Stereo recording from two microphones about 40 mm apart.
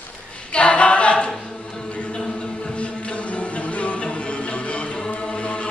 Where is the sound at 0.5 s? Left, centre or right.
Left.